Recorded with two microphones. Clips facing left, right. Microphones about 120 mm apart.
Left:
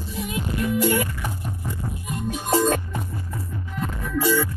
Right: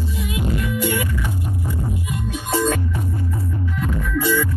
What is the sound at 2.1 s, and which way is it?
Music, 45° left (ahead or behind).